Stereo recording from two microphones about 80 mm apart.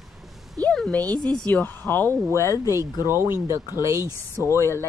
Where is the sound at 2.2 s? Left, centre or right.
Left.